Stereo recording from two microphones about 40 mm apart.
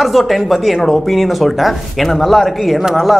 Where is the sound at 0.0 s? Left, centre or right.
Centre.